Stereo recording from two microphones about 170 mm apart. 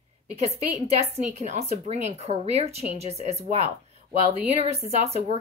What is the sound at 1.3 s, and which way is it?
A woman's voice, 40° right (ahead or behind).